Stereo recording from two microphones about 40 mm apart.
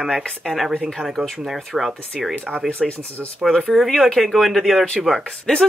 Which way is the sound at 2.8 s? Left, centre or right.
Centre.